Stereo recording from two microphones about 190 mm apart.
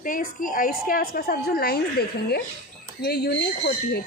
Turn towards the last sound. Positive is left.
turn(degrees=60)  # may be behind; listen again after turning